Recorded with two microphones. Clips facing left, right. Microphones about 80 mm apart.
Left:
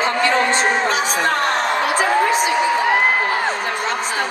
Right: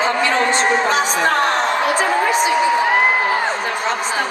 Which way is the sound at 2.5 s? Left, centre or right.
Centre.